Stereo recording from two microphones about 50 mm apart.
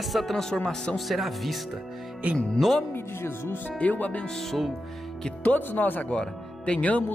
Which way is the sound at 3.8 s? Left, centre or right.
Left.